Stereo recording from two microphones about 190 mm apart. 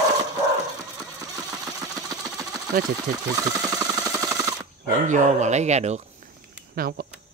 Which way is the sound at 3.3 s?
20° right (ahead or behind).